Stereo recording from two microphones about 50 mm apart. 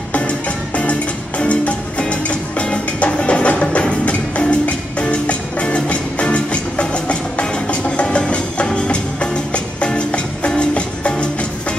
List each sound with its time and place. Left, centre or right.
1.4 s music: left